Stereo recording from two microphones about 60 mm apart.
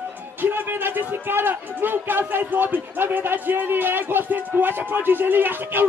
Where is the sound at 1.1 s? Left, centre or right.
Right.